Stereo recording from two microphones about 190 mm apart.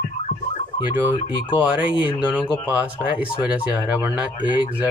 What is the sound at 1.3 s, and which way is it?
Speech, 25° left (ahead or behind).